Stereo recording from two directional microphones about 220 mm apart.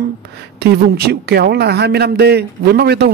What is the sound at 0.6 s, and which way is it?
A man's voice, 45° right (ahead or behind).